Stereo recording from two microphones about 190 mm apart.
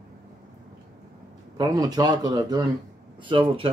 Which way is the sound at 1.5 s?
20° right (ahead or behind).